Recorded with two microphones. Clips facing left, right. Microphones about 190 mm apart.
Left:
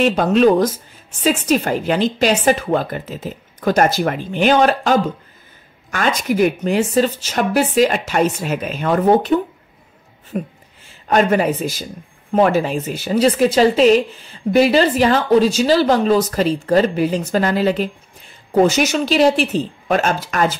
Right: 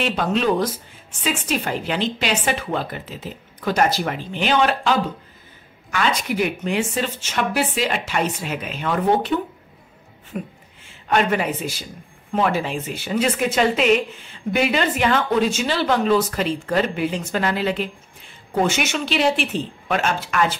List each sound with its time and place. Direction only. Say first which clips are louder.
0.0 s a woman's voice: left 8 dB; 45° left (ahead or behind)